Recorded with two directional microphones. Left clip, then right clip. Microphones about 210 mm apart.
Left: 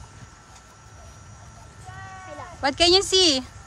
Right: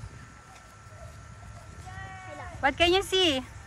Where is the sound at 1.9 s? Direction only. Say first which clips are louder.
Left 3 dB; 50° left (ahead or behind).